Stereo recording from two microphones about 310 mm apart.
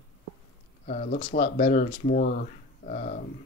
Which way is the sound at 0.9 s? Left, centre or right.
Left.